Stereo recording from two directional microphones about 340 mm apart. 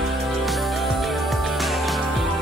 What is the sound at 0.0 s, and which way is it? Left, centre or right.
Music, centre.